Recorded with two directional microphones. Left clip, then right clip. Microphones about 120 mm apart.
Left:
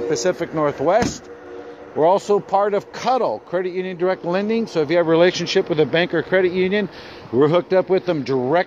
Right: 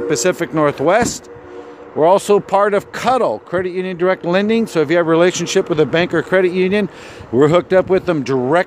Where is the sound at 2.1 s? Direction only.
85° right; by 5.0 s 55° right (ahead or behind).